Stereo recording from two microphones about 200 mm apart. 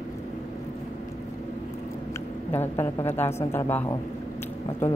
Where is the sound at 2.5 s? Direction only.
10° left (ahead or behind).